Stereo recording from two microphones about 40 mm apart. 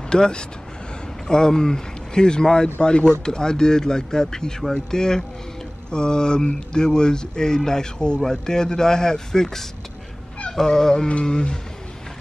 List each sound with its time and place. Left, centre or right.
0.1 s speech: left